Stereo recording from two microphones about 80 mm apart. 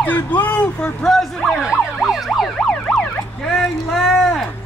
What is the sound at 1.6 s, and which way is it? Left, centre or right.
Emergency vehicle, centre.